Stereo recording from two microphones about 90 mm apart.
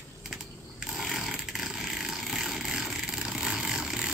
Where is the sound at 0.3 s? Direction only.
5° right (ahead or behind).